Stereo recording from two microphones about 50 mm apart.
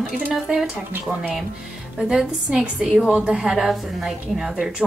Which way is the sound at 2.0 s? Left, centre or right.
Centre.